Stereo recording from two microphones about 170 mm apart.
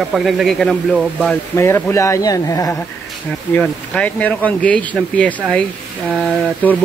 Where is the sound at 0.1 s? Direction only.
Centre (ahead or behind).